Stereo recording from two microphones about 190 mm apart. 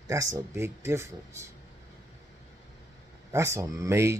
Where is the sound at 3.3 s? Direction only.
15° right (ahead or behind).